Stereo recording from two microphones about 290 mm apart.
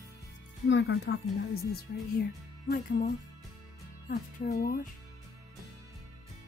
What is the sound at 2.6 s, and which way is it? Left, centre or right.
Speech, left.